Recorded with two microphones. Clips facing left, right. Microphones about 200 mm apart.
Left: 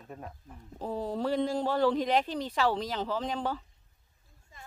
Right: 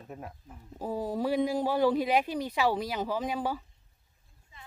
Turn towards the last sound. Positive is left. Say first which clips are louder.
# right 1 dB
turn(degrees=-10)  # may be behind; listen again after turning